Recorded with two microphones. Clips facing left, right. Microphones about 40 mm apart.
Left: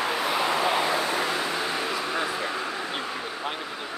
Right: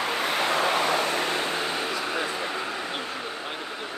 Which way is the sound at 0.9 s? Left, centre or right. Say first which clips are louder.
Right 1 dB; right.